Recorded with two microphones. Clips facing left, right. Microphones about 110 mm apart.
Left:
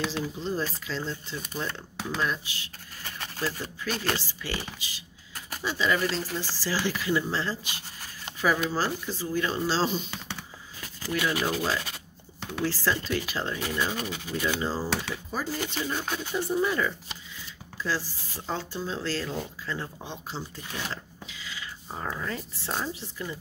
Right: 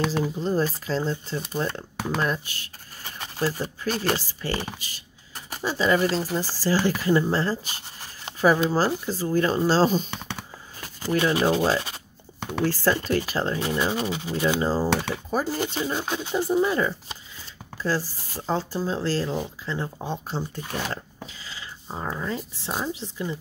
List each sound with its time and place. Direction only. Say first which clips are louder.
0.0 s speech: right 6 dB; 50° right (ahead or behind)
1.8 s speech: right 4 dB; 50° right (ahead or behind)
3.0 s a sound: right 5 dB; 20° right (ahead or behind)
4.2 s speech: right 5 dB; 45° right (ahead or behind)
5.6 s speech: right 5 dB; 35° right (ahead or behind)
11.0 s speech: right 6 dB; 30° right (ahead or behind)
12.6 s speech: right 5 dB; 50° right (ahead or behind); by 16.9 s 25° right (ahead or behind)
17.8 s speech: right 5 dB; 45° right (ahead or behind)
19.6 s speech: right 4 dB; 20° right (ahead or behind)
20.0 s speech: right 7 dB; 45° right (ahead or behind)
21.9 s speech: right 4 dB; 20° right (ahead or behind)